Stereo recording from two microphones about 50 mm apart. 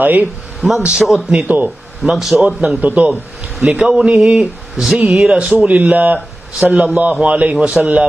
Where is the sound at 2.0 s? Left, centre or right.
Centre.